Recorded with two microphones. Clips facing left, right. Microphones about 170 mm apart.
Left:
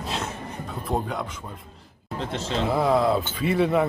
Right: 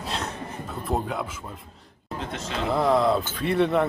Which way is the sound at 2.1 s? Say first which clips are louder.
Left 3 dB; 30° left (ahead or behind).